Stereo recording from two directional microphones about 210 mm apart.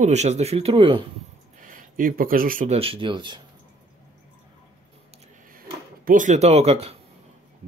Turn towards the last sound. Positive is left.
turn(degrees=-30)  # may be behind; listen again after turning